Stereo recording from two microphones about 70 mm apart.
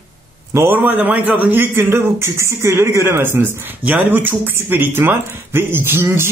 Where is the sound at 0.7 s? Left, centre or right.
Right.